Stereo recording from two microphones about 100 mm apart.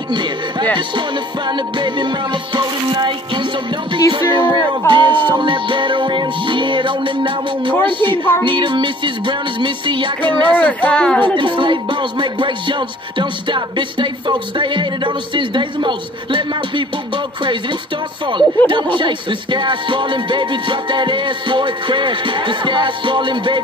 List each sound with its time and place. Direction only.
0.1 s speech: 50° right (ahead or behind)
1.5 s music: 50° right (ahead or behind)
10.6 s speech: 15° left (ahead or behind)
11.3 s music: 55° right (ahead or behind)
18.7 s music: 55° right (ahead or behind)